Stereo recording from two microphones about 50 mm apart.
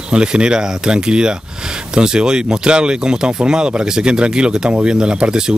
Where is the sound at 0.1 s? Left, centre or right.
Centre.